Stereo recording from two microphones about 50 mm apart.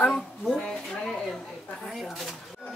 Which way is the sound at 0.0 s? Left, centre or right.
Centre.